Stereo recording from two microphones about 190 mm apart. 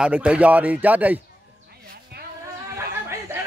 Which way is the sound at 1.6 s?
55° right (ahead or behind).